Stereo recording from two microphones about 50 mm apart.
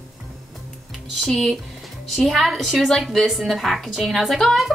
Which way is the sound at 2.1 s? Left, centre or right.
Centre.